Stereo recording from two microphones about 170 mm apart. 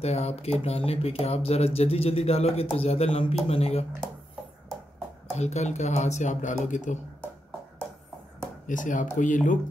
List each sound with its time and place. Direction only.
0.0 s speech: 40° left (ahead or behind)
5.3 s speech: 40° left (ahead or behind)
8.6 s speech: 50° left (ahead or behind)